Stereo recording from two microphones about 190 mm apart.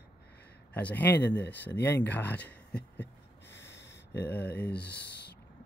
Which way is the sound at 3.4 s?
70° left (ahead or behind).